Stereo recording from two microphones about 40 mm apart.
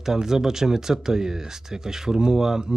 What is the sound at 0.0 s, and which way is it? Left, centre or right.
Speech, centre.